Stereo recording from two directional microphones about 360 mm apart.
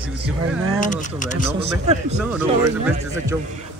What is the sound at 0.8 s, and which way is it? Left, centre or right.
Speech, left.